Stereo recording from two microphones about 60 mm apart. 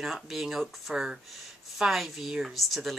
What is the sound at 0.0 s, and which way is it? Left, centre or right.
A woman's voice, centre.